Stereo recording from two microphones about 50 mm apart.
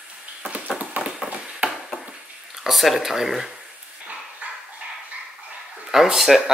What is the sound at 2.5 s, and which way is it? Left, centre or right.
Speech, centre.